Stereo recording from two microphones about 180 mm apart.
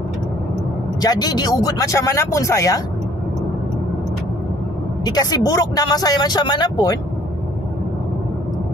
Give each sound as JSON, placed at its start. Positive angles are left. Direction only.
{"t": 1.0, "sound": "speech", "side_deg": 20}
{"t": 5.0, "sound": "speech", "side_deg": 20}